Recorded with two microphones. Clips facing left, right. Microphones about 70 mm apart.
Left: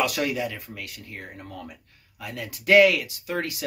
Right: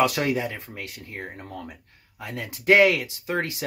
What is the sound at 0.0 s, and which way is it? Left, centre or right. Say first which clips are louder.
Speech: right 3 dB; right.